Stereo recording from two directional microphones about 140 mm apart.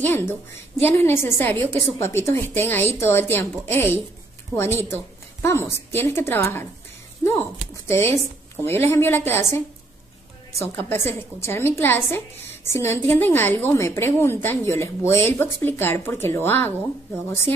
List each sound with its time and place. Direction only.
0.0 s a woman's voice: 15° left (ahead or behind)
7.9 s a woman's voice: 20° left (ahead or behind)
10.6 s a woman's voice: 15° left (ahead or behind)